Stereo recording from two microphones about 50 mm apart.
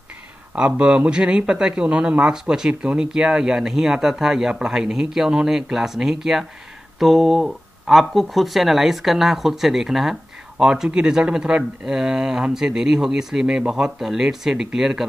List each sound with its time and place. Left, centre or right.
0.7 s speech: right
13.9 s speech: centre